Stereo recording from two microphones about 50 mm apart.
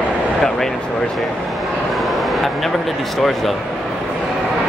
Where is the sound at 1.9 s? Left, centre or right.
Centre.